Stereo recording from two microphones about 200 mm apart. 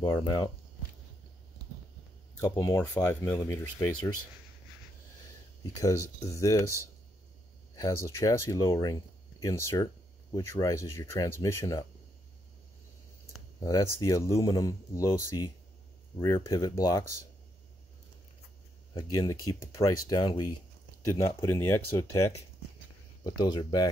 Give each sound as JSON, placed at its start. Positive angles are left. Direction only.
{"t": 0.0, "sound": "speech", "side_deg": 20}
{"t": 2.4, "sound": "speech", "side_deg": 15}
{"t": 5.6, "sound": "speech", "side_deg": 15}
{"t": 7.7, "sound": "speech", "side_deg": 15}
{"t": 13.7, "sound": "speech", "side_deg": 15}
{"t": 19.4, "sound": "speech", "side_deg": 15}